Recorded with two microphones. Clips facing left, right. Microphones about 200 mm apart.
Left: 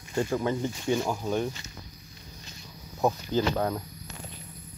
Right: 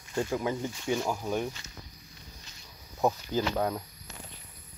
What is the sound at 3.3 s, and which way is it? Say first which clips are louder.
Speech: left 2 dB; 5° right (ahead or behind).